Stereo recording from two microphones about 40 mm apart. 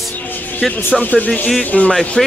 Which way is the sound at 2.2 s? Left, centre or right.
Centre.